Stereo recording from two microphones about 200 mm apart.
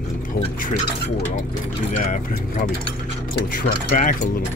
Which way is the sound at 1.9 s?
40° left (ahead or behind).